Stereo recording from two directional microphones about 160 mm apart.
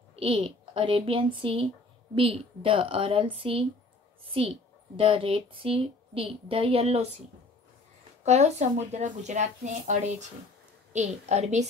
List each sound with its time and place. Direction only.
0.1 s speech: 35° right (ahead or behind)
4.9 s speech: 35° right (ahead or behind)